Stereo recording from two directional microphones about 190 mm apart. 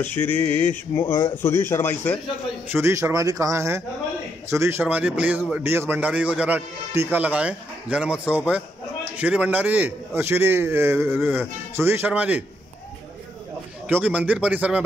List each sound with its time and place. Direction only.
0.0 s speech: 10° left (ahead or behind)
2.7 s speech: 15° right (ahead or behind)
13.8 s speech: 10° right (ahead or behind)